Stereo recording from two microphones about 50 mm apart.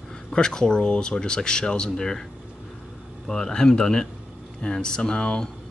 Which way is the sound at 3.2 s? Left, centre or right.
Centre.